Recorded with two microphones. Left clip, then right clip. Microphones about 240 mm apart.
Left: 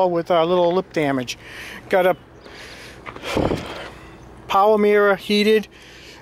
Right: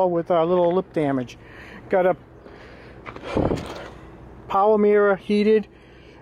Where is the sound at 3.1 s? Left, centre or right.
Centre.